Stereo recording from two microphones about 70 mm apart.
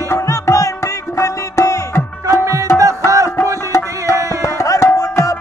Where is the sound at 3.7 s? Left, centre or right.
Left.